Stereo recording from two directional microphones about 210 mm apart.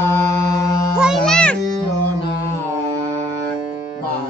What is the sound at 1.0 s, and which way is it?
Music, centre (ahead or behind).